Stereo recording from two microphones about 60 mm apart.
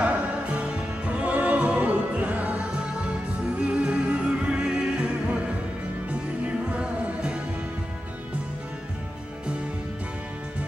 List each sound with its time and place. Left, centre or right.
0.0 s music: right
6.4 s music: centre